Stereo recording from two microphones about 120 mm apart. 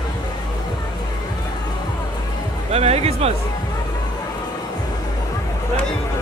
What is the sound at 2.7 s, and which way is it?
Speech, 60° right (ahead or behind).